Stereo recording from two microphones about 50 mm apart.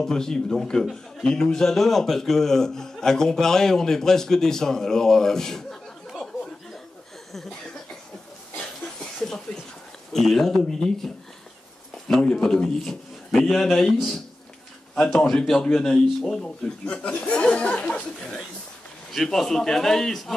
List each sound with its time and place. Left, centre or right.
0.0 s a man's voice: centre
10.1 s a man's voice: centre
12.1 s a man's voice: centre
15.0 s a man's voice: centre
16.3 s speech: centre
19.1 s a man's voice: centre